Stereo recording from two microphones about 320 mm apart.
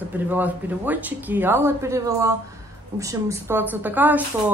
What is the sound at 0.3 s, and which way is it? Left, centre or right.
A woman's voice, centre.